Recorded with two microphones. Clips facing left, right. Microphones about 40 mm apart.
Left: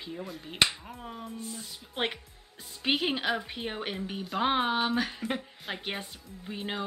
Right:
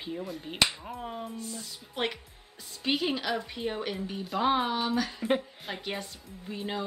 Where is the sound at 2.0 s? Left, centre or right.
Left.